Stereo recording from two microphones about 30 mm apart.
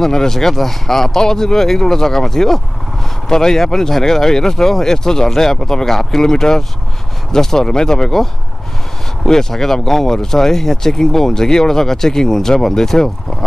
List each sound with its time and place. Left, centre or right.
0.0 s speech: centre